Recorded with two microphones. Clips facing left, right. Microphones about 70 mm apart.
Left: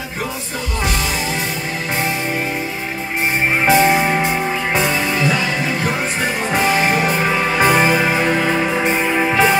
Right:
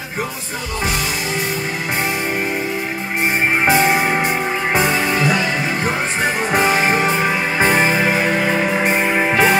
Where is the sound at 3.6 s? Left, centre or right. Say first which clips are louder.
Left 3 dB; right.